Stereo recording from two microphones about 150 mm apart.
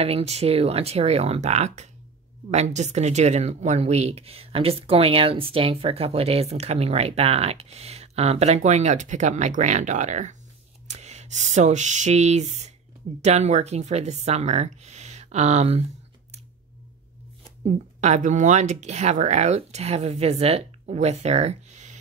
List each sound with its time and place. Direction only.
0.0 s speech: 45° right (ahead or behind)
17.6 s speech: 50° right (ahead or behind)